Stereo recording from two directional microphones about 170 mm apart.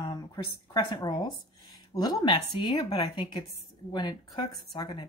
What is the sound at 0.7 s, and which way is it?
Speech, 25° left (ahead or behind).